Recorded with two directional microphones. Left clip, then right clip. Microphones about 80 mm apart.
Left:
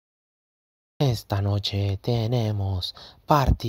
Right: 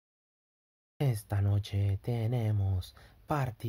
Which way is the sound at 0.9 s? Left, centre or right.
Left.